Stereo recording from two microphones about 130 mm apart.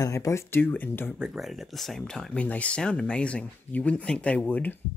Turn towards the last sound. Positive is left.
turn(degrees=15)  # may be behind; listen again after turning